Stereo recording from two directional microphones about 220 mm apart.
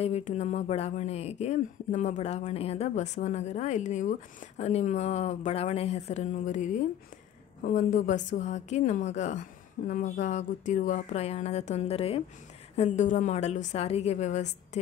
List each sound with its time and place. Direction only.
0.0 s speech: 30° left (ahead or behind)